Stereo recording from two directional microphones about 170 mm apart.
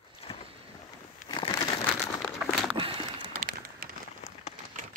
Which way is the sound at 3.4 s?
55° right (ahead or behind).